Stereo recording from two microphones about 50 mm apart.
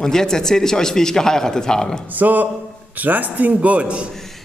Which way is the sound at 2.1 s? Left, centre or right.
Right.